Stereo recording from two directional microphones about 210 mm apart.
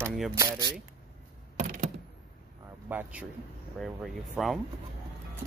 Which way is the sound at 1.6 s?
40° right (ahead or behind).